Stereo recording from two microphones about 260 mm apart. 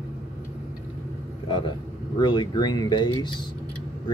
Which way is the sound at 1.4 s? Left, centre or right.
Centre.